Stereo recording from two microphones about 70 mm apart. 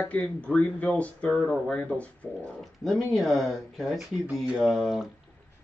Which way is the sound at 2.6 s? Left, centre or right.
Centre.